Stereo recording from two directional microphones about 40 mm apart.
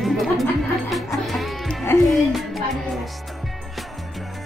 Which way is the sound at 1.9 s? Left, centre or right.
Left.